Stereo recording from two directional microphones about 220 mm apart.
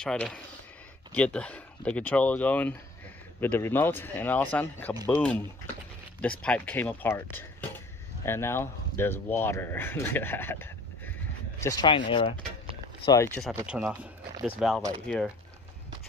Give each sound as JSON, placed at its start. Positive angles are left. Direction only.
{"t": 0.0, "sound": "speech", "side_deg": 5}
{"t": 6.4, "sound": "speech", "side_deg": 5}
{"t": 13.7, "sound": "speech", "side_deg": -5}